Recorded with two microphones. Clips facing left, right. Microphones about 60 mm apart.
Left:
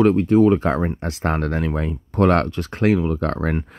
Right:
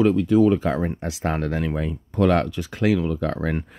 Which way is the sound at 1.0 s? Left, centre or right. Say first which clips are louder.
Left 3 dB; left.